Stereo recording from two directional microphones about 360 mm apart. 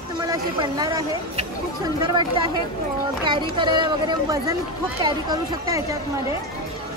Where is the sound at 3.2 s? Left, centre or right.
Centre.